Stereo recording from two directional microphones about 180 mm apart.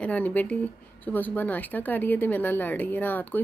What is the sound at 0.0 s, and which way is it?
Speech, 10° left (ahead or behind).